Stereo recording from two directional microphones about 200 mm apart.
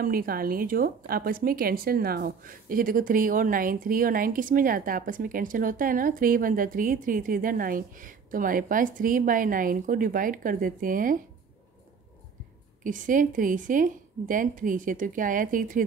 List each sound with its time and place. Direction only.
0.0 s a woman's voice: 45° right (ahead or behind)
12.8 s a woman's voice: 40° right (ahead or behind)